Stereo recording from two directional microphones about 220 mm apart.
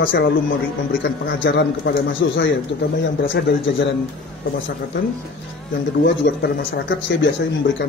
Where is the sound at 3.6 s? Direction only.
55° left (ahead or behind).